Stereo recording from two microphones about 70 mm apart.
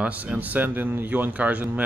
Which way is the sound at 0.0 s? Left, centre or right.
Right.